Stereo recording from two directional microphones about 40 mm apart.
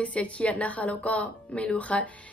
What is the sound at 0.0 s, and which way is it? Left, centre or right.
A woman's voice, left.